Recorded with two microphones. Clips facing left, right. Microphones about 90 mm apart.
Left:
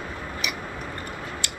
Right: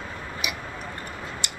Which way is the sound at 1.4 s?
20° right (ahead or behind).